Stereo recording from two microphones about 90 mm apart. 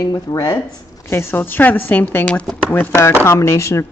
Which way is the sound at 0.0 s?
45° left (ahead or behind).